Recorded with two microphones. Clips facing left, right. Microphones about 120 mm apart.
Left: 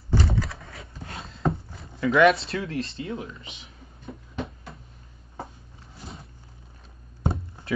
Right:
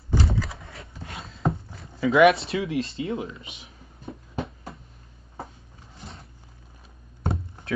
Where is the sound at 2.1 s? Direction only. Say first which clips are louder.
Right 2 dB; centre (ahead or behind).